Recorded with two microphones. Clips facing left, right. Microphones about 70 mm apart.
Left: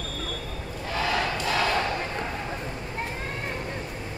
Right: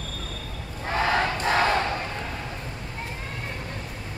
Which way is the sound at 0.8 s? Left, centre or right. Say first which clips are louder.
Right 3 dB; right.